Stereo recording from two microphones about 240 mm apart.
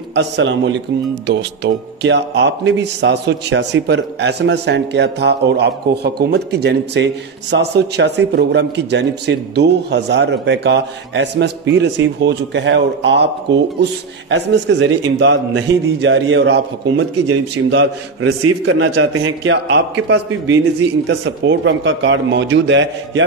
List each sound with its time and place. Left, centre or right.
0.1 s speech: right